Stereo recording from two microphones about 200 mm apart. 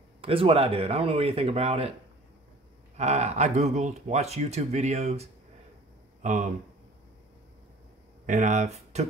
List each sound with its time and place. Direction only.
0.2 s speech: 30° right (ahead or behind)
3.0 s speech: 35° right (ahead or behind)
8.3 s speech: 40° right (ahead or behind)